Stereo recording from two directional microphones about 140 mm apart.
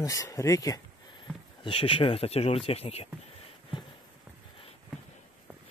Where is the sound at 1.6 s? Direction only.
40° left (ahead or behind).